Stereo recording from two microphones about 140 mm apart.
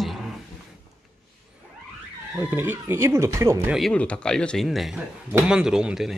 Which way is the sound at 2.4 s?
15° right (ahead or behind).